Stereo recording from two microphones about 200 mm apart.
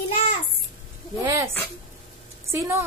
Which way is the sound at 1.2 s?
15° right (ahead or behind).